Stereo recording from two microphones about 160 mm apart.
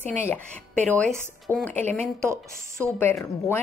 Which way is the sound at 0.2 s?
10° left (ahead or behind).